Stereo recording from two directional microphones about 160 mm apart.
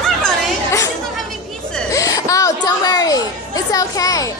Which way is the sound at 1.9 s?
20° left (ahead or behind).